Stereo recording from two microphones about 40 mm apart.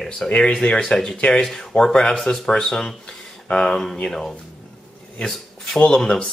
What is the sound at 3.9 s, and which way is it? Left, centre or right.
Speech, left.